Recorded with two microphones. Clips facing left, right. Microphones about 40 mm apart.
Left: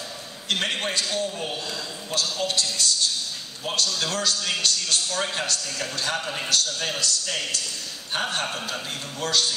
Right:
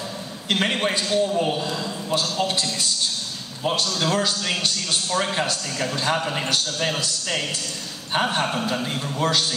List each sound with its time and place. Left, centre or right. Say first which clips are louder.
0.5 s a man's voice: right 4 dB; right